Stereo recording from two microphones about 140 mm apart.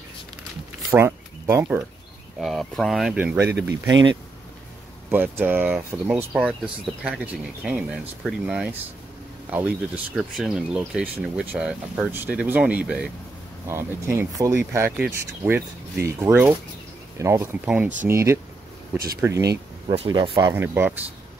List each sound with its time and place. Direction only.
0.9 s speech: 20° right (ahead or behind)
2.4 s speech: centre (ahead or behind)
3.2 s speech: 15° right (ahead or behind)
5.1 s speech: 15° right (ahead or behind)
13.7 s speech: 20° right (ahead or behind)
14.9 s speech: 5° right (ahead or behind)
15.1 s speech: 15° right (ahead or behind)
20.5 s speech: 15° right (ahead or behind)